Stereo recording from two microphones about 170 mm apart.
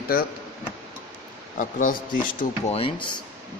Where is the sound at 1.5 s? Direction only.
50° left (ahead or behind).